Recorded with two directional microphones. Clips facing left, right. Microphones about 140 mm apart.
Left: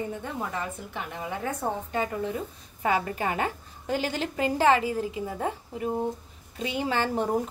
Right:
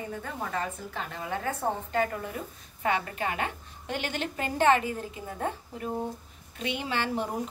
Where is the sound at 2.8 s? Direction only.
30° left (ahead or behind).